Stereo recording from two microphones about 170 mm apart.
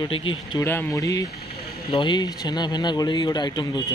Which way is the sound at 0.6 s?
15° left (ahead or behind).